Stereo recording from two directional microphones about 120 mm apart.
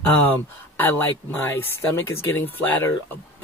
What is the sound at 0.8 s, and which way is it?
Speech, 15° left (ahead or behind).